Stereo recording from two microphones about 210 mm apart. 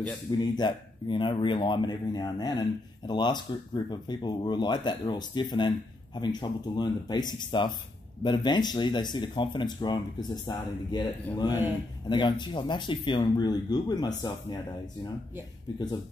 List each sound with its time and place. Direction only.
0.6 s speech: 20° left (ahead or behind)